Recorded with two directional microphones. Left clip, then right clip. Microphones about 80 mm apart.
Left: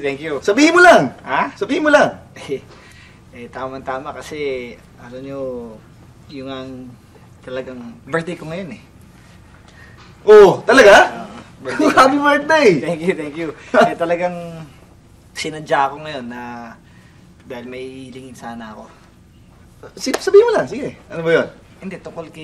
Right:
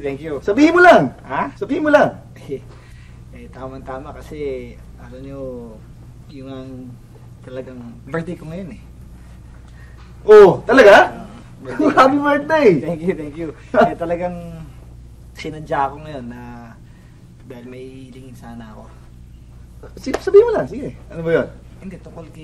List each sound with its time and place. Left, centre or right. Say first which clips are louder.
0.0 s a man's voice: left 3 dB; left
10.2 s a man's voice: even; left